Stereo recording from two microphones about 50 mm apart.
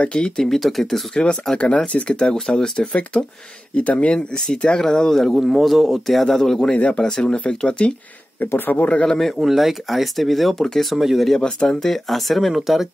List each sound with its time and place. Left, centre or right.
0.0 s speech: centre
0.4 s speech: centre
1.1 s speech: left
2.1 s speech: centre
8.5 s speech: left
9.0 s speech: centre
9.4 s speech: centre
10.6 s speech: centre
10.9 s speech: centre
11.3 s speech: centre